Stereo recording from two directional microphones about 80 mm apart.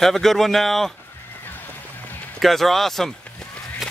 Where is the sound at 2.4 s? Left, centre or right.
Centre.